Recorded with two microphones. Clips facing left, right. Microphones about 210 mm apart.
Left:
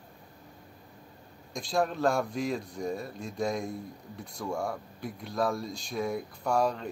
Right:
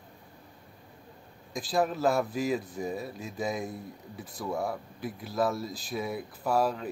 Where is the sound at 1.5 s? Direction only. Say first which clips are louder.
Right 1 dB; 5° right (ahead or behind).